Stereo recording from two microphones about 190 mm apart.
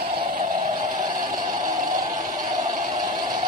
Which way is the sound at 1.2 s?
20° right (ahead or behind).